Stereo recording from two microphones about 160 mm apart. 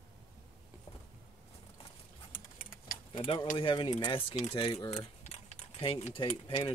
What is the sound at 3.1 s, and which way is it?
Speech, 30° left (ahead or behind).